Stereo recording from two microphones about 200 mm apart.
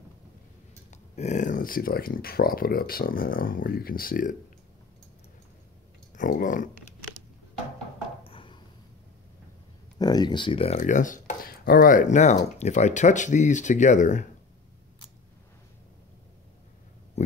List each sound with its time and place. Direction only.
1.1 s speech: 35° left (ahead or behind)
6.1 s speech: 40° left (ahead or behind)
8.2 s a sound: 25° left (ahead or behind)
9.9 s speech: 20° left (ahead or behind)
10.8 s speech: 40° left (ahead or behind)